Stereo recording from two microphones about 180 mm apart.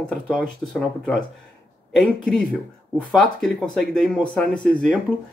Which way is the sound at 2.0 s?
5° left (ahead or behind).